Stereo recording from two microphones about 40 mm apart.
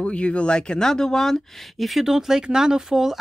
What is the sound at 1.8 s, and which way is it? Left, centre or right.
Speech, centre.